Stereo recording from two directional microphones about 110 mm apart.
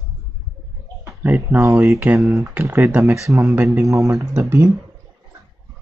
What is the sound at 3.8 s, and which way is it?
Speech, 30° right (ahead or behind).